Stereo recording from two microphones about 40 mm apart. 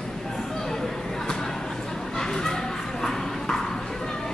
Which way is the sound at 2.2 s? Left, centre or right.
Centre.